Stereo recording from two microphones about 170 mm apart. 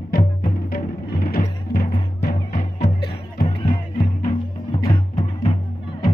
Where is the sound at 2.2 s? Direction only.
65° left (ahead or behind).